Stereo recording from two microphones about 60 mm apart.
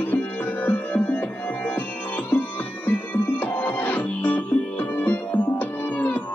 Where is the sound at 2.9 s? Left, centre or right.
Left.